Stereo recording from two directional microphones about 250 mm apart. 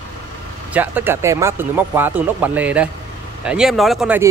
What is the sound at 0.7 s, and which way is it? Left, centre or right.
Speech, centre.